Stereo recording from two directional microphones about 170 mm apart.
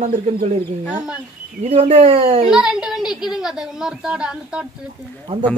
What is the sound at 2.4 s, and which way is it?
A woman's voice, 5° right (ahead or behind).